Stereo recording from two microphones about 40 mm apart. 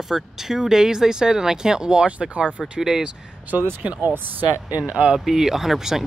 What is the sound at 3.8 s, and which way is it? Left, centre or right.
Speech, right.